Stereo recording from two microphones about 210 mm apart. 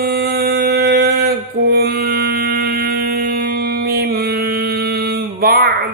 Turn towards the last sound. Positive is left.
turn(degrees=-45)  # may be behind; listen again after turning